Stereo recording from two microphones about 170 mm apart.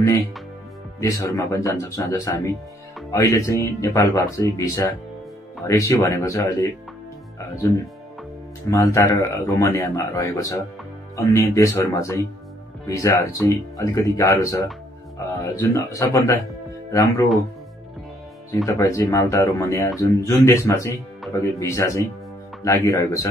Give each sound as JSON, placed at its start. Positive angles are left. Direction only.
{"t": 0.9, "sound": "a man's voice", "side_deg": 20}
{"t": 18.7, "sound": "a man's voice", "side_deg": 20}